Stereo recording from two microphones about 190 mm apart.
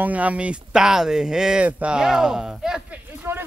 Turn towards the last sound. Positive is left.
turn(degrees=-10)  # may be behind; listen again after turning